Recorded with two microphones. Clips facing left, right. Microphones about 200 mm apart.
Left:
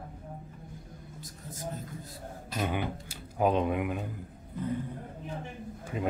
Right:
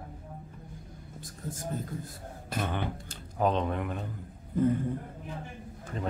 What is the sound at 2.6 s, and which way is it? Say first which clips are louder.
Speech: left 2 dB; 10° left (ahead or behind).